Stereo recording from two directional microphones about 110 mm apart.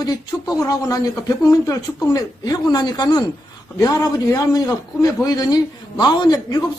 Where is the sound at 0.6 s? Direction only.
35° left (ahead or behind).